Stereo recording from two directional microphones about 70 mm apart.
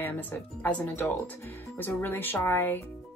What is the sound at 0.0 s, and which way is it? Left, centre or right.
A woman's voice, left.